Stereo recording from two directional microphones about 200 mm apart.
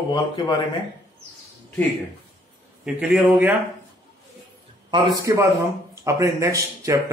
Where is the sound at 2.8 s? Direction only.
5° right (ahead or behind).